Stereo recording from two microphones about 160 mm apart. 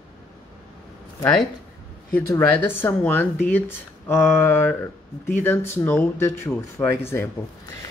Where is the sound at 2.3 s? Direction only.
15° left (ahead or behind).